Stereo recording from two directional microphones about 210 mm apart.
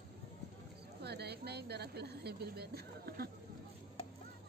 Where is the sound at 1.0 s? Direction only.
50° right (ahead or behind).